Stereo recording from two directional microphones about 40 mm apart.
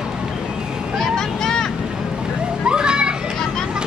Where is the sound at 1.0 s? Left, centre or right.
Centre.